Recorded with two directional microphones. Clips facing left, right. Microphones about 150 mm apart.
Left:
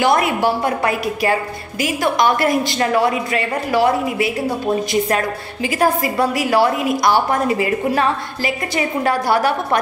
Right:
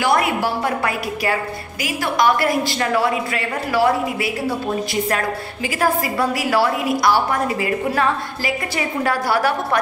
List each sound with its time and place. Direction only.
0.0 s a woman's voice: 20° left (ahead or behind)
5.8 s a woman's voice: 20° left (ahead or behind)
9.0 s a woman's voice: 20° left (ahead or behind)